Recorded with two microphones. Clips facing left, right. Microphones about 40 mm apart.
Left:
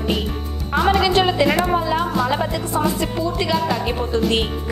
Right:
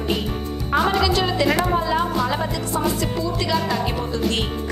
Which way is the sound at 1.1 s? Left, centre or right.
Left.